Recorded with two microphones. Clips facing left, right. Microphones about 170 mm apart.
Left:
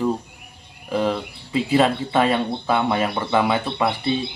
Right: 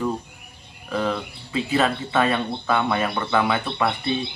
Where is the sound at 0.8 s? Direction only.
20° left (ahead or behind).